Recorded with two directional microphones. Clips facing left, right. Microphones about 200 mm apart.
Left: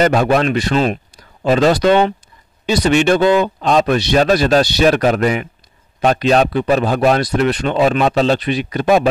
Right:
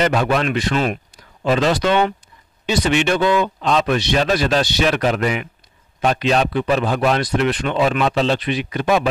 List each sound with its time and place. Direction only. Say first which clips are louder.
0.0 s a man's voice: left 4 dB; 45° left (ahead or behind)